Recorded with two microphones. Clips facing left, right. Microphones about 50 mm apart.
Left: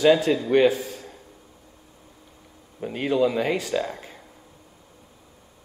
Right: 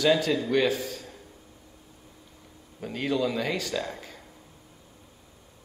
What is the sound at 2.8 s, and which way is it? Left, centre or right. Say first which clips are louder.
Speech: left 5 dB; centre.